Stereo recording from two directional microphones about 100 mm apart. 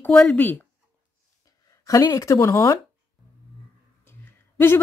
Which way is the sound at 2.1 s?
30° left (ahead or behind).